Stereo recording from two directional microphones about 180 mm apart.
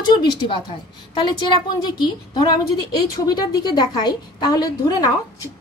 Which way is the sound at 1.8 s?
25° left (ahead or behind).